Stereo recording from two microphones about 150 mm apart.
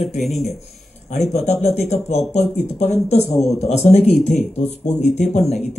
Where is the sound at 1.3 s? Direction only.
45° left (ahead or behind).